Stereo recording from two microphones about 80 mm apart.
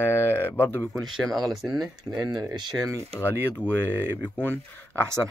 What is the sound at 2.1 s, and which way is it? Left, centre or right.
Speech, right.